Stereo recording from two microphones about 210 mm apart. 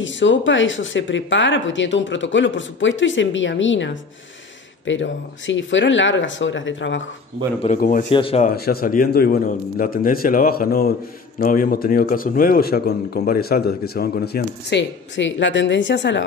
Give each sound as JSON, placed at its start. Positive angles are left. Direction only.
{"t": 0.0, "sound": "speech", "side_deg": 60}
{"t": 7.6, "sound": "speech", "side_deg": 40}
{"t": 8.1, "sound": "speech", "side_deg": 25}
{"t": 8.5, "sound": "a man's voice", "side_deg": 45}